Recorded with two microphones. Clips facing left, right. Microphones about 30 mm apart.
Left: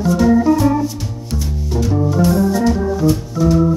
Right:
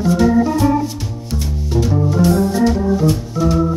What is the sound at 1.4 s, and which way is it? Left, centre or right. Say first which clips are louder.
Organ: right 2 dB; centre.